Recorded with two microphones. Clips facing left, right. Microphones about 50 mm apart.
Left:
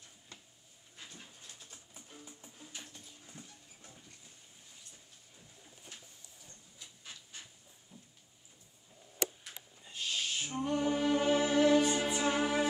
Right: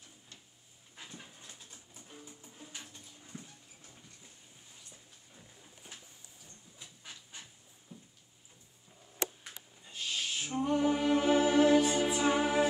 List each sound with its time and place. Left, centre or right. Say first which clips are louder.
0.9 s dog: right 3 dB; centre
2.5 s music: right 2 dB; centre
3.3 s clip-clop: right 5 dB; right
7.9 s a sound: right 5 dB; centre
9.8 s music: even; centre